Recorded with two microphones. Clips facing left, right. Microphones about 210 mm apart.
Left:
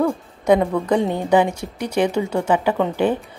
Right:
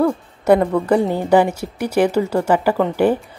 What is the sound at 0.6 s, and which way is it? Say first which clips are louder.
Speech: right 3 dB; 5° right (ahead or behind).